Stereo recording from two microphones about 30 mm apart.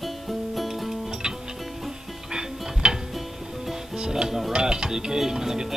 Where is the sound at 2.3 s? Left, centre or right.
Right.